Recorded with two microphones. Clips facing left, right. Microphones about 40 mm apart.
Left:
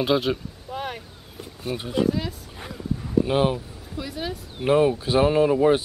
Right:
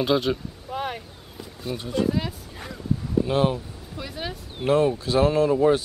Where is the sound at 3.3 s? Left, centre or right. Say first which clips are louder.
Right 1 dB; centre.